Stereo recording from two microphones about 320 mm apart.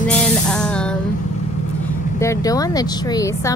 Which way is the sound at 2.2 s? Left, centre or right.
Centre.